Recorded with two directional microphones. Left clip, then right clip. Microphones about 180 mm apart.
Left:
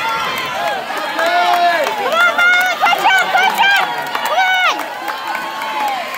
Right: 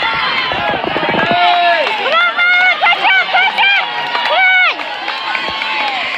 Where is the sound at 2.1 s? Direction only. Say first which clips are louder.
Even; 25° right (ahead or behind).